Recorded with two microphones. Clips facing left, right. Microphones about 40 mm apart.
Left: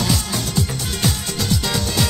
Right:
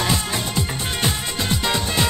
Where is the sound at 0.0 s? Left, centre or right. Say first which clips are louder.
Even; right.